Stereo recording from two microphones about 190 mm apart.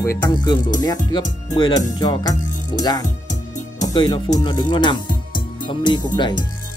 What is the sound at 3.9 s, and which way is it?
Speech, 25° left (ahead or behind).